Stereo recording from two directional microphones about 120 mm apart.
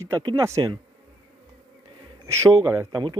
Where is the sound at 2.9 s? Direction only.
35° right (ahead or behind).